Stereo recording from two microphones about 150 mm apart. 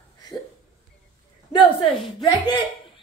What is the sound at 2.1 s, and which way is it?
Speech, 25° left (ahead or behind).